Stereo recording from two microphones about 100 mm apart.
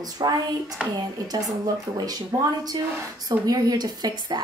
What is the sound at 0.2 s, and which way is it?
Speech, 40° right (ahead or behind).